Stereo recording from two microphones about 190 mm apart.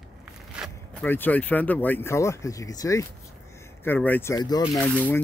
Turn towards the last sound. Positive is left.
turn(degrees=10)  # may be behind; listen again after turning